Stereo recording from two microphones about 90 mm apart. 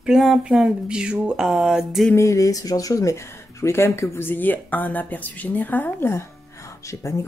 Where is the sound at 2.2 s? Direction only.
35° left (ahead or behind).